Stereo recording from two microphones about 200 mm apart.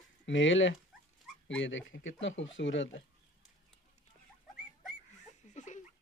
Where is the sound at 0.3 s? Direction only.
70° left (ahead or behind).